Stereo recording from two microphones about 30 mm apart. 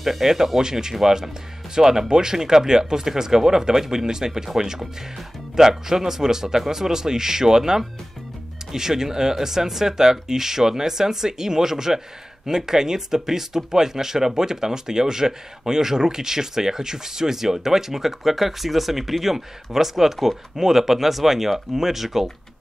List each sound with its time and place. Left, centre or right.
0.0 s speech: centre
0.6 s speech: right